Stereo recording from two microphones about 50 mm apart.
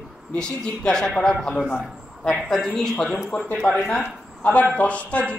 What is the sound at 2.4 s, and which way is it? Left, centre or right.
Speech, centre.